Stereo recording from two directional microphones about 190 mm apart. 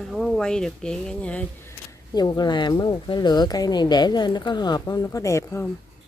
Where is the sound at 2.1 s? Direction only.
20° left (ahead or behind).